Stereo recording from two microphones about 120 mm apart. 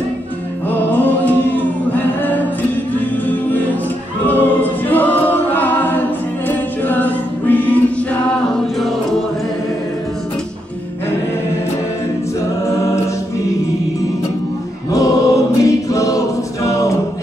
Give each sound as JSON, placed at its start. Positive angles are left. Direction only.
{"t": 0.7, "sound": "chant", "side_deg": 15}
{"t": 4.3, "sound": "a capella", "side_deg": 15}
{"t": 14.9, "sound": "choir", "side_deg": 30}